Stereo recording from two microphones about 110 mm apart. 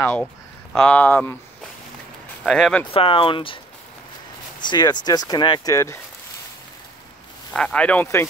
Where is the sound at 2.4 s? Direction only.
5° left (ahead or behind).